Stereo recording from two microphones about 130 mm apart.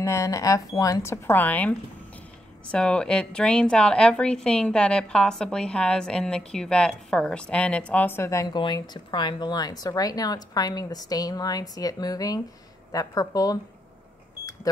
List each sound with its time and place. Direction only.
0.0 s a woman's voice: 25° left (ahead or behind)
8.5 s speech: 35° left (ahead or behind)